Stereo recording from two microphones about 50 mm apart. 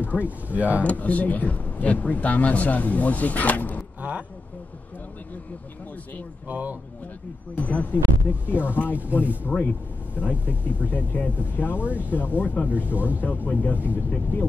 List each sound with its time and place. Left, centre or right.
0.1 s speech: right
0.5 s speech: right
0.8 s speech: left
4.0 s vehicle: right
6.4 s speech: right
7.5 s speech: left
11.8 s speech: right
12.1 s speech: left
12.7 s speech: right
13.2 s speech: left
13.7 s speech: right
14.3 s speech: left